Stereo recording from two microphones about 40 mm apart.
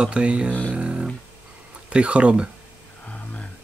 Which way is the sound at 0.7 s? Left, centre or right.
Right.